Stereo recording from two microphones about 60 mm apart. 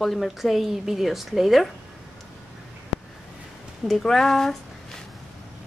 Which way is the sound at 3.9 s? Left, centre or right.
Centre.